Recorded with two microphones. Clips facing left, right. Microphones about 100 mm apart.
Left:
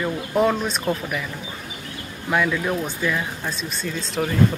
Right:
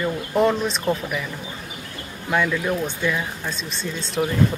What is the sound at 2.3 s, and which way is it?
Speech, centre (ahead or behind).